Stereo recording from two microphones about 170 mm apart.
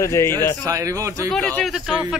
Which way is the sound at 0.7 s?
20° right (ahead or behind).